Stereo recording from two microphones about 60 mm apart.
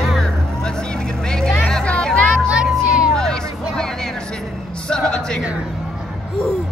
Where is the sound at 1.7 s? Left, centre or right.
Centre.